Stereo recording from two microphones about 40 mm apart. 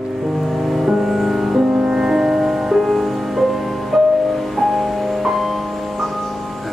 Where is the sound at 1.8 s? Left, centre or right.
Right.